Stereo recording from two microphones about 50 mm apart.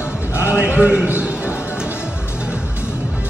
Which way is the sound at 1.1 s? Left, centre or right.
Right.